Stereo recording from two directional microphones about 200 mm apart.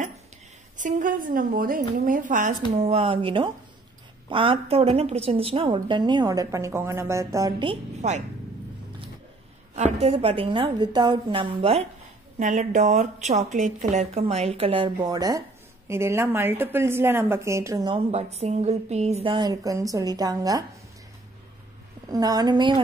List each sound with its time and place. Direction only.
0.7 s a woman's voice: 40° right (ahead or behind); by 7.7 s 20° right (ahead or behind)
10.0 s a woman's voice: 30° right (ahead or behind)
12.4 s a woman's voice: 40° right (ahead or behind); by 20.6 s 20° right (ahead or behind)
22.0 s a woman's voice: 20° right (ahead or behind)